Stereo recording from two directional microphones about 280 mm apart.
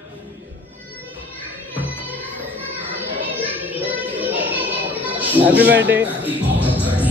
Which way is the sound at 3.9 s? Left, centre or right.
Centre.